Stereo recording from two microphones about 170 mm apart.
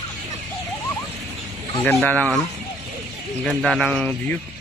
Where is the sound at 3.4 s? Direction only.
Centre (ahead or behind).